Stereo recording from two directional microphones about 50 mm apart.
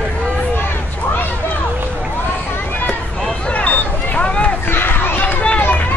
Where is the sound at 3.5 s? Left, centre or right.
Left.